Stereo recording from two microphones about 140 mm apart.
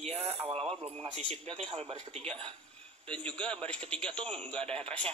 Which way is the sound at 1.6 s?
45° right (ahead or behind).